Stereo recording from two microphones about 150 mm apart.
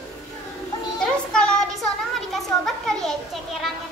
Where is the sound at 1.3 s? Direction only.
5° left (ahead or behind).